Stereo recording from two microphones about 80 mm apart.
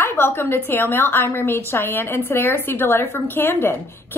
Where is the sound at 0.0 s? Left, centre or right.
Left.